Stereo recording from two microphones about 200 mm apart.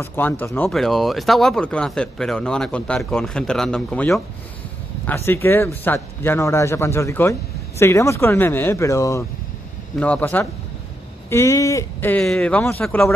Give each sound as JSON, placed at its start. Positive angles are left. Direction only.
{"t": 0.0, "sound": "speech", "side_deg": 10}